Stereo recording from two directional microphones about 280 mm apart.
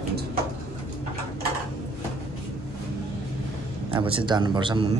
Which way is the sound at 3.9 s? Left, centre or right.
Centre.